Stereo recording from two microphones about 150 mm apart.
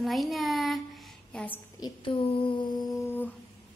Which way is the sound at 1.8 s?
35° left (ahead or behind).